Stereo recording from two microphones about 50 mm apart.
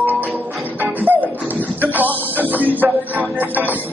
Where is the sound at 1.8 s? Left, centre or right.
Right.